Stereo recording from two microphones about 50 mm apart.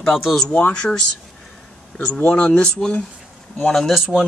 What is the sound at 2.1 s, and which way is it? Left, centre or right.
Speech, left.